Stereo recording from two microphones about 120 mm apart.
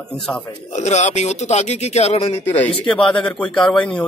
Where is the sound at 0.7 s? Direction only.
75° left (ahead or behind).